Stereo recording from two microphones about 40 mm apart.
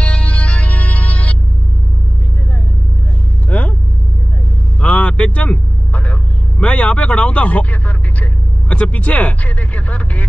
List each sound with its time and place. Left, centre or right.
0.0 s music: left
3.4 s vehicle: left
4.7 s vehicle: left
6.6 s speech: left